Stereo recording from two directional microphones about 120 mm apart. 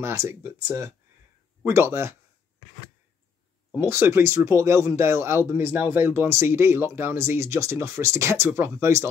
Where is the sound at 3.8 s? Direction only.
20° right (ahead or behind).